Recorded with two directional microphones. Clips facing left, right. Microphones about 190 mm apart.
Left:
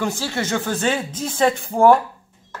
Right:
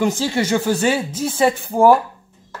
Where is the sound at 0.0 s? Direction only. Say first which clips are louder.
Right 5 dB; 15° right (ahead or behind).